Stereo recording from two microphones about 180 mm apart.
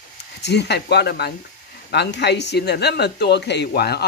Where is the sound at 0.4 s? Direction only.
70° left (ahead or behind).